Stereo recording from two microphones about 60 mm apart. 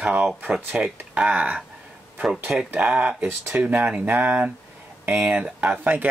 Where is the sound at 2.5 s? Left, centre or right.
Right.